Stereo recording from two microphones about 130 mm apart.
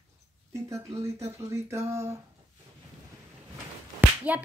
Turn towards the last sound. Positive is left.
turn(degrees=-10)  # may be behind; listen again after turning